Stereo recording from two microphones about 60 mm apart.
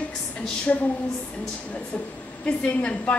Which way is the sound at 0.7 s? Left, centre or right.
Left.